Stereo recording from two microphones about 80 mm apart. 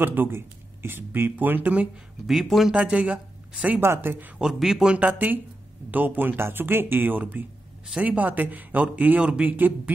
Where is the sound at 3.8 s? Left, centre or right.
Right.